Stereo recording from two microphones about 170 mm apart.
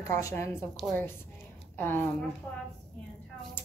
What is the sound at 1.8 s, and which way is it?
Speech, 10° left (ahead or behind).